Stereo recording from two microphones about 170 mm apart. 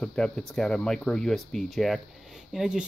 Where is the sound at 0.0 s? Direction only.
5° left (ahead or behind).